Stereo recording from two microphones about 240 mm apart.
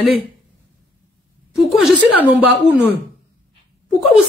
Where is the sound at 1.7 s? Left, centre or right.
Centre.